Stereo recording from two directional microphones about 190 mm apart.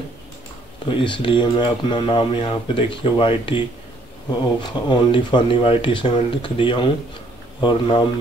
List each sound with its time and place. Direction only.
0.8 s speech: 25° left (ahead or behind)
4.7 s speech: 25° left (ahead or behind)